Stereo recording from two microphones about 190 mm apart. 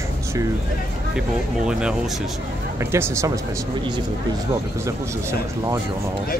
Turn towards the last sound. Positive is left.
turn(degrees=-15)  # may be behind; listen again after turning